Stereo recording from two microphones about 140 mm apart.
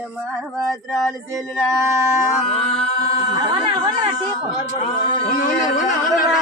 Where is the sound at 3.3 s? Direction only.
30° right (ahead or behind).